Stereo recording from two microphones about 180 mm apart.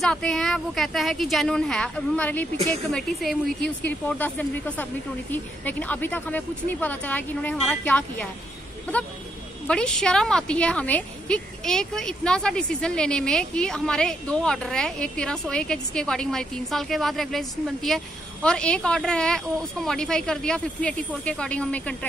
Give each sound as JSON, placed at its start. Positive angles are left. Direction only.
{"t": 0.0, "sound": "a woman's voice", "side_deg": 5}
{"t": 2.5, "sound": "speech", "side_deg": -35}
{"t": 2.9, "sound": "a woman's voice", "side_deg": 0}
{"t": 9.7, "sound": "a woman's voice", "side_deg": 5}